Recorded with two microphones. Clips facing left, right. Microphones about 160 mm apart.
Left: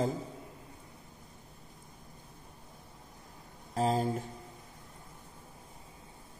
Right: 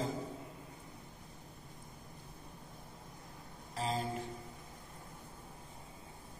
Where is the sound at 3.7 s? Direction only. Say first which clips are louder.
Left 8 dB; 45° left (ahead or behind).